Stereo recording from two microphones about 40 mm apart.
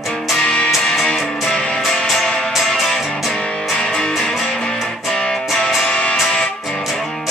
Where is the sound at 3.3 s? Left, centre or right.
Centre.